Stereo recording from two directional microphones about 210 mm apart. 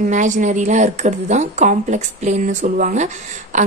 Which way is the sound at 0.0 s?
35° right (ahead or behind).